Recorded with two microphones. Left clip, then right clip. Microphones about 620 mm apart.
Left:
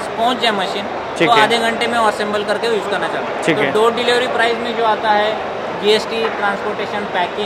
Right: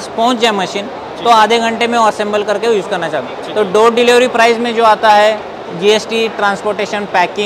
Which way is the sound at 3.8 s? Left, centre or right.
Right.